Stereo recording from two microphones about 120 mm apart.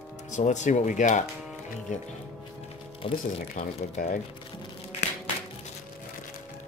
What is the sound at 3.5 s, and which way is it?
Speech, 90° left.